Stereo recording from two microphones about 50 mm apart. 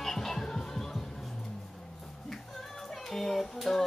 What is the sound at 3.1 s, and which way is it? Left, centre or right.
Child singing, centre.